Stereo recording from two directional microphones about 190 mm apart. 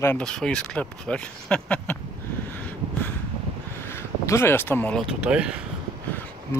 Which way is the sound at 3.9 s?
15° left (ahead or behind).